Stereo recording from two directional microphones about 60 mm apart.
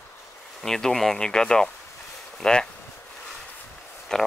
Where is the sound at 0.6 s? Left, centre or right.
Centre.